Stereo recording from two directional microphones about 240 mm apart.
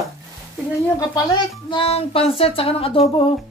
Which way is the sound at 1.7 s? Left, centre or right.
Left.